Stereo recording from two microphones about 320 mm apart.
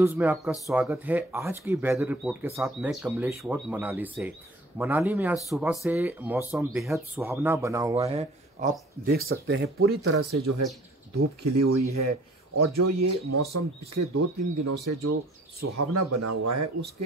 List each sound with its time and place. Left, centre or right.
0.0 s speech: centre; by 9.8 s right
10.0 s speech: right
11.5 s speech: right
15.9 s speech: right